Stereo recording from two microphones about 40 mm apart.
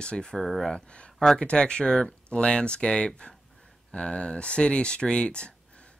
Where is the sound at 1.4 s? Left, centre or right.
Left.